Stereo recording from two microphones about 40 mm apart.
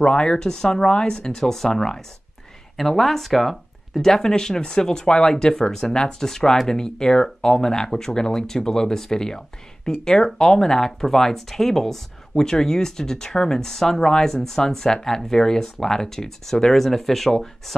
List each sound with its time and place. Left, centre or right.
0.0 s speech: left